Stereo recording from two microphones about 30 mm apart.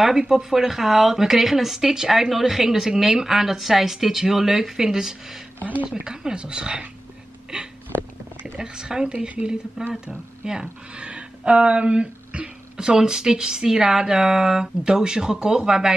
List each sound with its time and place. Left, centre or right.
0.0 s speech: centre
5.6 s speech: right
5.9 s speech: right
7.5 s hiccup: right
8.5 s speech: right
11.0 s speech: right
12.7 s speech: right